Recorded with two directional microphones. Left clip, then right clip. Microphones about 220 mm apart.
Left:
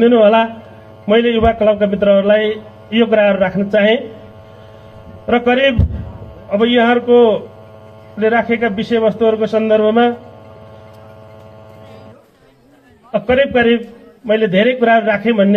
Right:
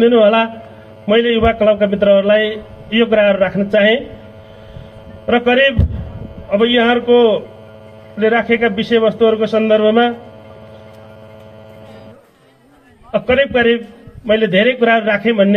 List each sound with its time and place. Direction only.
0.0 s a man's voice: 30° right (ahead or behind)
5.2 s a man's voice: 25° right (ahead or behind)
13.1 s a man's voice: 30° right (ahead or behind)